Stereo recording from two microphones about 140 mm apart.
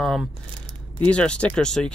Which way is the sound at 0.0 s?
Centre (ahead or behind).